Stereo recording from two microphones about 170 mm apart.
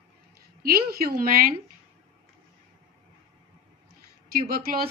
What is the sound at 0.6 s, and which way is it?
Speech, 60° right (ahead or behind).